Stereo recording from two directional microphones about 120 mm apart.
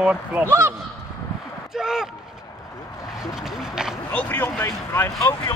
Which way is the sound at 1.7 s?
5° right (ahead or behind).